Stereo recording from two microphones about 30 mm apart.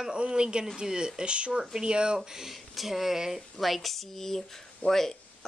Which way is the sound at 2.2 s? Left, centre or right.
Centre.